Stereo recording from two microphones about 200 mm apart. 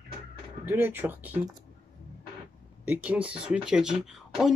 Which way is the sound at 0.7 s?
10° right (ahead or behind).